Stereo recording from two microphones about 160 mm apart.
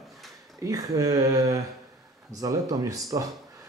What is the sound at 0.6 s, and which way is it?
Speech, 20° right (ahead or behind).